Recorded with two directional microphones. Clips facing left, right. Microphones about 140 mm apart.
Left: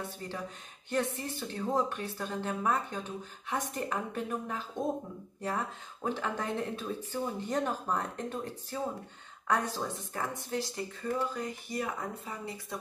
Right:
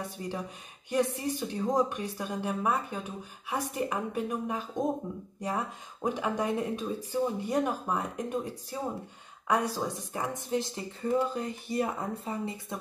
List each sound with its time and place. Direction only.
0.8 s speech: 15° right (ahead or behind)